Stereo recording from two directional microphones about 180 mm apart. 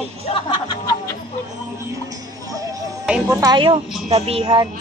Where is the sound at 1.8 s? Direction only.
20° right (ahead or behind).